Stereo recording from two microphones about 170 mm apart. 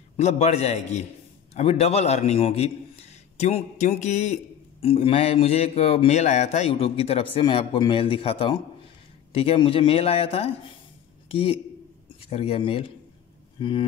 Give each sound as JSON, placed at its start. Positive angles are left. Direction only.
{"t": 0.2, "sound": "a man's voice", "side_deg": 40}